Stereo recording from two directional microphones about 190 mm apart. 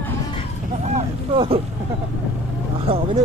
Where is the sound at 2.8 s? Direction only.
30° right (ahead or behind).